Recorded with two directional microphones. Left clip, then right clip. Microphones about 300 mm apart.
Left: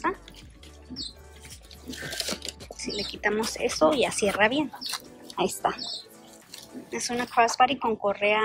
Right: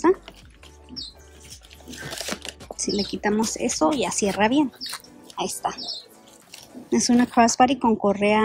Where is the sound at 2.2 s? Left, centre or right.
Centre.